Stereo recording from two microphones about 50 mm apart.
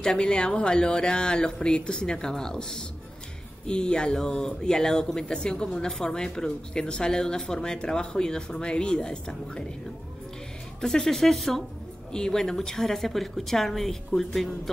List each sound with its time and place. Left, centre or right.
0.0 s speech: centre
10.8 s speech: centre